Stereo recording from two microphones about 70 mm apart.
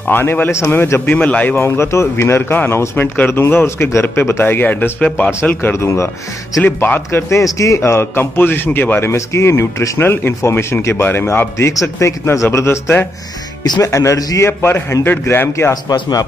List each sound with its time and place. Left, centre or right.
0.1 s speech: left
1.1 s speech: left
1.8 s speech: left
7.1 s speech: left
9.1 s a man's voice: left
13.8 s a man's voice: left
14.4 s speech: left
15.7 s a man's voice: left